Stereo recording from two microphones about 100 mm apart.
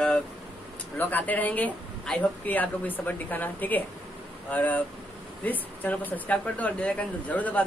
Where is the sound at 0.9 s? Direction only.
15° left (ahead or behind).